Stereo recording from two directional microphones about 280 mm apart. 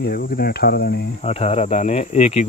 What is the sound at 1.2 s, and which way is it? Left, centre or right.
Speech, left.